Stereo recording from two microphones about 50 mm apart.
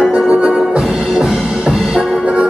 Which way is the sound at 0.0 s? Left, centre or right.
Centre.